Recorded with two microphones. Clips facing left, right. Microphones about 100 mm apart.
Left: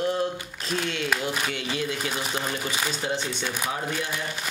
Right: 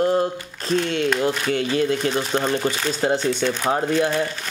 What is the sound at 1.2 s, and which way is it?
Speech, 45° right (ahead or behind).